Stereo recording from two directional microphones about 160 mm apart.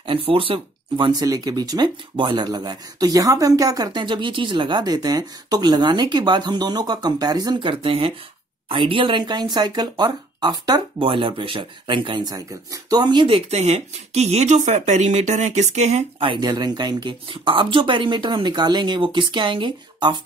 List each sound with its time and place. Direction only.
0.0 s speech: 35° right (ahead or behind)
13.5 s speech: 40° right (ahead or behind)